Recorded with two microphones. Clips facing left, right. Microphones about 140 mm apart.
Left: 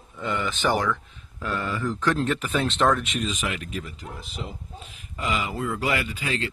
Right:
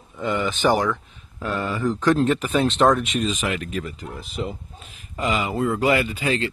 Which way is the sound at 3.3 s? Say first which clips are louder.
Right 5 dB; 50° right (ahead or behind).